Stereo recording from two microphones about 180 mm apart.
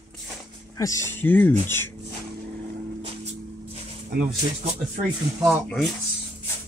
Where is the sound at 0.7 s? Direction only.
20° left (ahead or behind).